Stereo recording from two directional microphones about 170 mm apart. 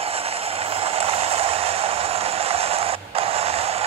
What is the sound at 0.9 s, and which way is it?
Vehicle, 35° right (ahead or behind).